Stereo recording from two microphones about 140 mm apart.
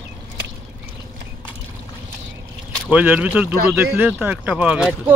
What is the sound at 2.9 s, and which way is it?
Speech, 10° right (ahead or behind).